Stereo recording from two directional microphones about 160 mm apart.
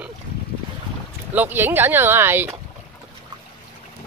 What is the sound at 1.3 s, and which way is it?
Speech, 15° right (ahead or behind).